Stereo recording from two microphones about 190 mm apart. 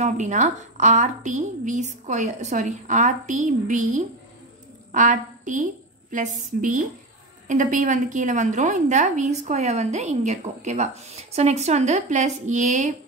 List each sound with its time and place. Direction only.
0.0 s a woman's voice: 40° right (ahead or behind)